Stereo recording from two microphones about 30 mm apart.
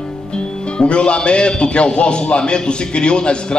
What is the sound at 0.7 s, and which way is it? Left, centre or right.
A man's voice, left.